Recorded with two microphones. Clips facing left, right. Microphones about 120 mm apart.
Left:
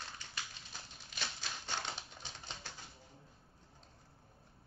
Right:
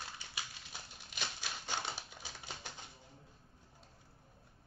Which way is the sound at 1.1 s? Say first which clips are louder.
Right 1 dB; 10° right (ahead or behind).